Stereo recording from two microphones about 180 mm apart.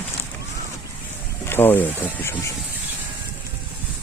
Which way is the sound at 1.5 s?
10° left (ahead or behind).